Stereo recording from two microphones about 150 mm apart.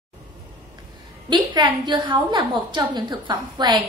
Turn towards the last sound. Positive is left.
turn(degrees=-30)  # may be behind; listen again after turning